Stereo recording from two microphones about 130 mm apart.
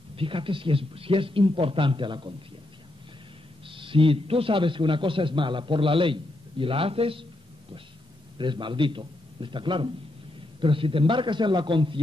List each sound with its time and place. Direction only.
0.1 s a man's voice: 45° right (ahead or behind)
3.6 s a man's voice: 40° right (ahead or behind)
8.4 s a man's voice: 40° right (ahead or behind)